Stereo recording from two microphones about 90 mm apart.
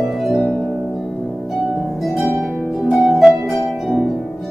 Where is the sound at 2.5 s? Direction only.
20° right (ahead or behind).